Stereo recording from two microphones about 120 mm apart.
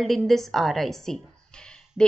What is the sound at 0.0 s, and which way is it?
A woman's voice, centre (ahead or behind).